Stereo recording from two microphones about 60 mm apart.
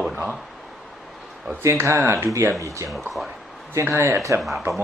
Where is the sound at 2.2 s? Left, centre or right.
Right.